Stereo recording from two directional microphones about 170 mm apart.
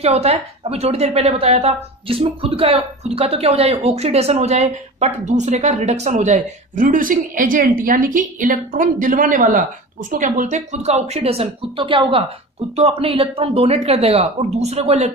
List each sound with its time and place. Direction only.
0.0 s a woman's voice: 40° right (ahead or behind)